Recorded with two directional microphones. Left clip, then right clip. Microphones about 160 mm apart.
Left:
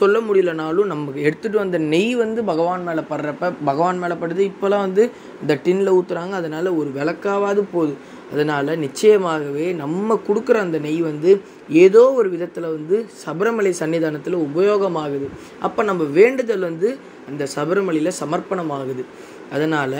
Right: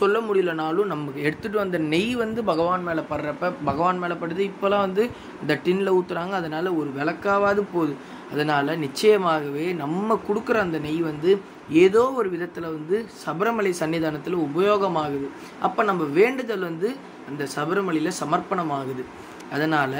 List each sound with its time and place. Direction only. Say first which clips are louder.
0.0 s a man's voice: left 5 dB; 20° left (ahead or behind)
15.6 s a man's voice: left 2 dB; 20° left (ahead or behind)